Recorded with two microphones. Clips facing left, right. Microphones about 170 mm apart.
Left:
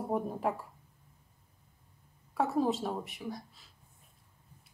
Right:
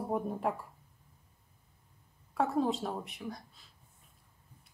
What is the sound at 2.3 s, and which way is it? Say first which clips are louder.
Speech: left 1 dB; centre (ahead or behind).